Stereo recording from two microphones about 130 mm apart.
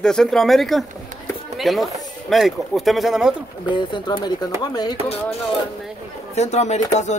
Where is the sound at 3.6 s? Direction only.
35° left (ahead or behind).